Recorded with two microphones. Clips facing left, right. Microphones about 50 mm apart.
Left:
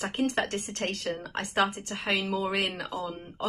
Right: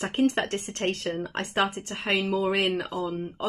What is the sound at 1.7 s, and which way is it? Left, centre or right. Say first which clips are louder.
Speech: right 2 dB; right.